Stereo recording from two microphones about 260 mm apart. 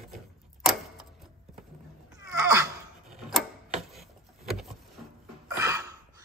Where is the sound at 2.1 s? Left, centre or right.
Centre.